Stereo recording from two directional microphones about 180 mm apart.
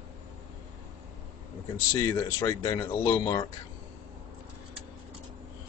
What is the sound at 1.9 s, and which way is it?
Speech, 20° left (ahead or behind).